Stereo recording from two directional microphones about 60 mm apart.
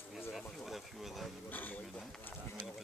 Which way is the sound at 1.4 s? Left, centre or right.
Left.